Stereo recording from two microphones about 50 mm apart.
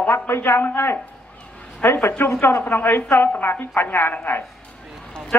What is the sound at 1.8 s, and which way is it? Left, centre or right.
A woman's voice, left.